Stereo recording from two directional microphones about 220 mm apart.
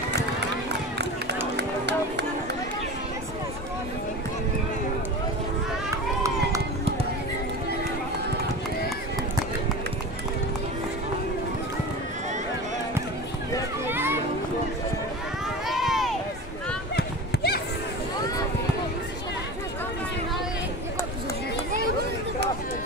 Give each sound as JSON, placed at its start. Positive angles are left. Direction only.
{"t": 1.6, "sound": "music", "side_deg": -50}
{"t": 5.9, "sound": "run", "side_deg": -15}
{"t": 13.8, "sound": "children playing", "side_deg": -10}
{"t": 15.7, "sound": "a sound", "side_deg": 0}
{"t": 16.9, "sound": "run", "side_deg": 45}